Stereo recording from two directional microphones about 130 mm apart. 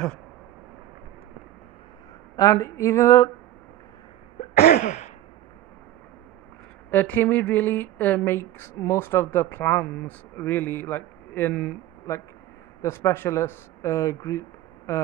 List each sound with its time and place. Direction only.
2.3 s speech: 25° left (ahead or behind)
4.4 s a sound: 60° left (ahead or behind)
6.9 s speech: 15° left (ahead or behind)
12.8 s speech: 20° left (ahead or behind)